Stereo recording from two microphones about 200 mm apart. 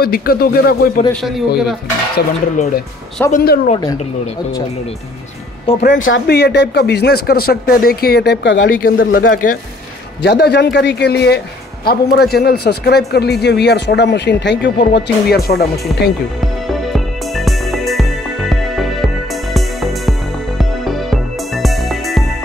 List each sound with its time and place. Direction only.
0.0 s speech: 50° left (ahead or behind)
2.1 s speech: 40° left (ahead or behind)
5.7 s speech: 30° left (ahead or behind)
6.0 s speech: 65° left (ahead or behind)
8.6 s speech: 45° left (ahead or behind)
10.2 s speech: 55° left (ahead or behind)
16.9 s music: centre (ahead or behind)